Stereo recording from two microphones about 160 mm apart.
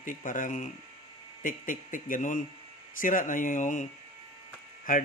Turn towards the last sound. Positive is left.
turn(degrees=60)  # may be behind; listen again after turning